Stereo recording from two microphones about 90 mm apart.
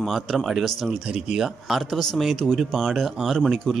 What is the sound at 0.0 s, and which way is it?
Speech, centre (ahead or behind).